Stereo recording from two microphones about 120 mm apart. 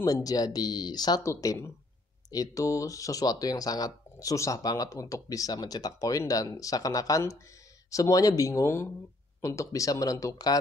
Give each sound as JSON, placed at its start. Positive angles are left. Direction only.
{"t": 0.0, "sound": "speech", "side_deg": 30}